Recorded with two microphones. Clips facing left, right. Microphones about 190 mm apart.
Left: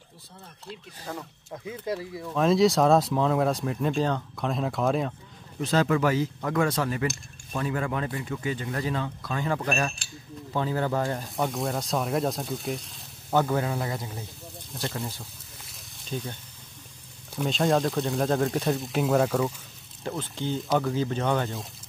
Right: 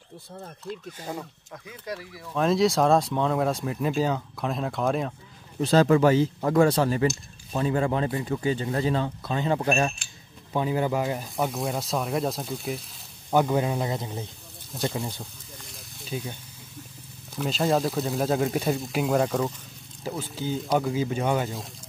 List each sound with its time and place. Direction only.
1.5 s speech: 25° left (ahead or behind)
2.3 s speech: centre (ahead or behind)
5.6 s speech: 35° right (ahead or behind)
10.5 s speech: 15° right (ahead or behind)
13.3 s speech: 15° right (ahead or behind)
15.7 s a sound: 5° right (ahead or behind)
17.4 s speech: centre (ahead or behind)